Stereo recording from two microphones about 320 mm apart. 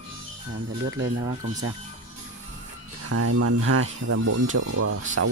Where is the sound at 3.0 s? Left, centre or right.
Right.